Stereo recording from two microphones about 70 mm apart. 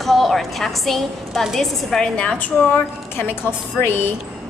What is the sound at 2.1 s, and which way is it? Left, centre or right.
Speech, centre.